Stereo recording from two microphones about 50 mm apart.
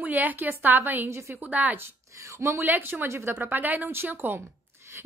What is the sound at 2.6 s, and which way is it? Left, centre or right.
Speech, right.